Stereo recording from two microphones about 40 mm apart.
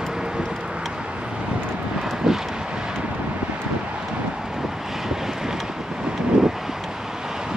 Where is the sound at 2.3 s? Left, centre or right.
Centre.